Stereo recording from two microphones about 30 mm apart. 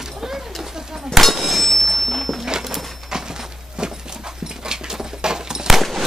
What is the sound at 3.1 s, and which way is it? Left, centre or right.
Dog, right.